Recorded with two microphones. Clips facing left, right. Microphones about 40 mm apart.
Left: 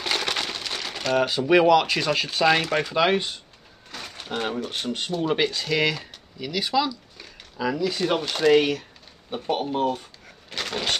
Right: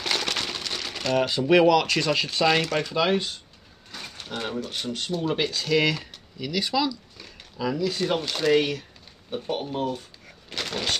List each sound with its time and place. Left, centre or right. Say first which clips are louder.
0.0 s speech: left 1 dB; centre
5.3 s speech: right 1 dB; centre
9.8 s speech: left 4 dB; left
10.5 s speech: left 1 dB; centre